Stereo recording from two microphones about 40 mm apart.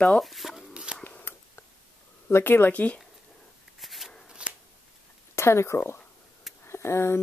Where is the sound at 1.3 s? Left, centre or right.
Left.